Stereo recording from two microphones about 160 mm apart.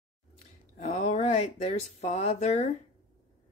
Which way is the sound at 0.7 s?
45° left (ahead or behind).